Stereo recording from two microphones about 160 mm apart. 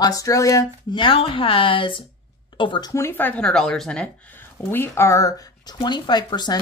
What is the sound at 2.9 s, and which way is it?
Speech, 15° left (ahead or behind).